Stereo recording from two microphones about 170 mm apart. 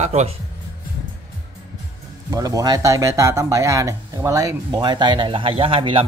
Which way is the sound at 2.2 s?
20° right (ahead or behind).